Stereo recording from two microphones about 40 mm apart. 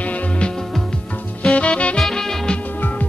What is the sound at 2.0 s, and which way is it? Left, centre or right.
Music, centre.